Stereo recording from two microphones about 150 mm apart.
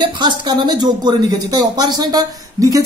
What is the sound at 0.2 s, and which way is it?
Speech, 30° right (ahead or behind).